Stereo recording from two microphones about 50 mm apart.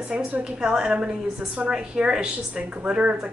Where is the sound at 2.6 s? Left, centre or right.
Right.